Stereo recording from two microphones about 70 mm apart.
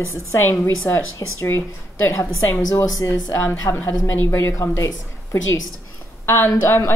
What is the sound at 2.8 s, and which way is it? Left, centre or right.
Speech, left.